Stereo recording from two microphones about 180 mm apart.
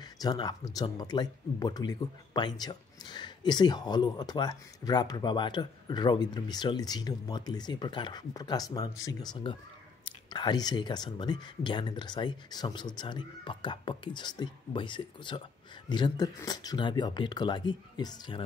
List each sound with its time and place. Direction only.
0.0 s speech: 25° left (ahead or behind)